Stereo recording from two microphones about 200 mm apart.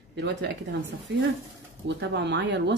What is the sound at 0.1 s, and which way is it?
Speech, 60° right (ahead or behind).